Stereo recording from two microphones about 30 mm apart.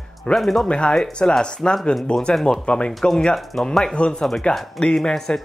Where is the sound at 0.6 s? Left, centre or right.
Left.